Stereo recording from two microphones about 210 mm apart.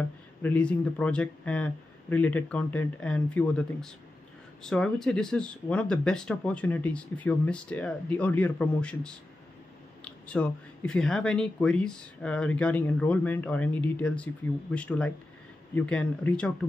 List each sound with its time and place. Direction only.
0.4 s speech: 5° left (ahead or behind)
10.2 s speech: 5° left (ahead or behind)